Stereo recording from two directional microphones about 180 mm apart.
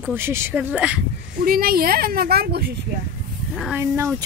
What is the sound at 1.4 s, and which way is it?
A woman's voice, 55° right (ahead or behind).